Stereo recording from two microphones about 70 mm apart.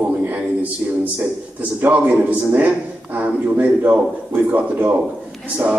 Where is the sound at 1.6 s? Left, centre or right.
Right.